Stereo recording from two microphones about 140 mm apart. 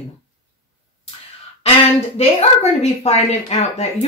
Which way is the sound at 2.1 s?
50° left (ahead or behind).